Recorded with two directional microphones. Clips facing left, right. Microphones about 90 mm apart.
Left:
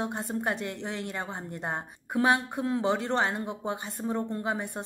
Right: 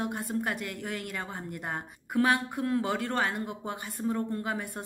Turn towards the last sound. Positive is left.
turn(degrees=20)  # may be behind; listen again after turning